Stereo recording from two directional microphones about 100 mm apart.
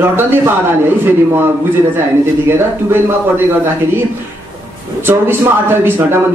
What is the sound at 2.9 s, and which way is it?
Speech, 20° right (ahead or behind).